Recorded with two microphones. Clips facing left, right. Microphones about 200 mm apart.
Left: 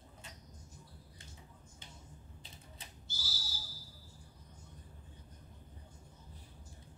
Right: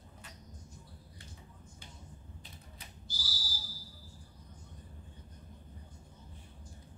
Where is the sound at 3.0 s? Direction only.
25° left (ahead or behind).